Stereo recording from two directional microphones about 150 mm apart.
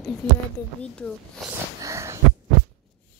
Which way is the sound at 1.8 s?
20° right (ahead or behind).